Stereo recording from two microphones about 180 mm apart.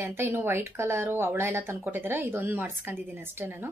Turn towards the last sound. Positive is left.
turn(degrees=-10)  # may be behind; listen again after turning